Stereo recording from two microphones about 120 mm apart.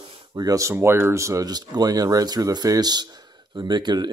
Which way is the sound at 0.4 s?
25° right (ahead or behind).